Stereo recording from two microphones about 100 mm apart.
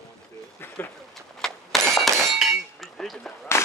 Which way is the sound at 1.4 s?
5° left (ahead or behind).